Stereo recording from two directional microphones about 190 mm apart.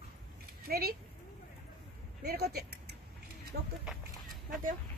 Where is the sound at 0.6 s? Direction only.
55° right (ahead or behind).